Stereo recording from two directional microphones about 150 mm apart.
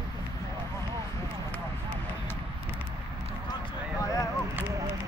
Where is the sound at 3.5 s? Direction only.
25° left (ahead or behind).